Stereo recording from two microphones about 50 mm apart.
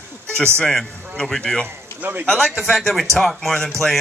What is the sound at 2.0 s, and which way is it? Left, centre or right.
Speech, right.